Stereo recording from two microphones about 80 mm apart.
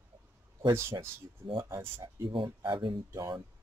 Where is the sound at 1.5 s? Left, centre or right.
Right.